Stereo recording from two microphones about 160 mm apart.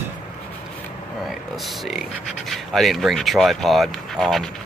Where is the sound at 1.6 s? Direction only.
Centre (ahead or behind).